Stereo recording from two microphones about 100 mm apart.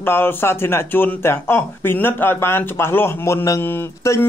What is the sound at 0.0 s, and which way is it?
Speech, 20° left (ahead or behind).